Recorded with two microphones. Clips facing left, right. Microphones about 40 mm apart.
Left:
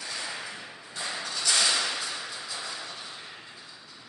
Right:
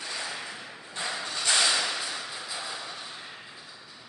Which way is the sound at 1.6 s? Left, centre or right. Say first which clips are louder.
Right 1 dB; centre.